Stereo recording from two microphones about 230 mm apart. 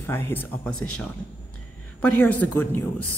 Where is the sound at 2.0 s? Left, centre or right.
Centre.